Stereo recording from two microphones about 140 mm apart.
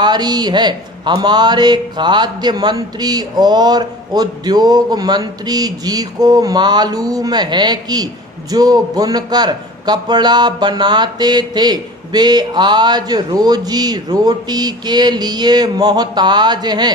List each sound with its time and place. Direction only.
0.0 s speech: 30° right (ahead or behind)